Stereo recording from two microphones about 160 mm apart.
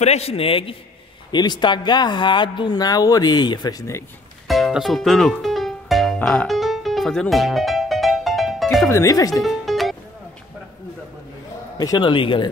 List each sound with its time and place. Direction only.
0.0 s a man's voice: 40° left (ahead or behind); by 4.0 s 20° left (ahead or behind)
4.5 s music: centre (ahead or behind)
8.8 s speech: 20° left (ahead or behind)
9.4 s music: centre (ahead or behind)
11.8 s speech: 25° left (ahead or behind)